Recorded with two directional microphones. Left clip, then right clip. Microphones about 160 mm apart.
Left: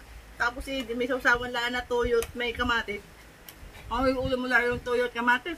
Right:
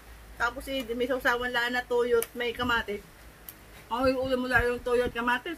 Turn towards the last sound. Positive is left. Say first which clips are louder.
# left 3 dB
turn(degrees=15)  # may be behind; listen again after turning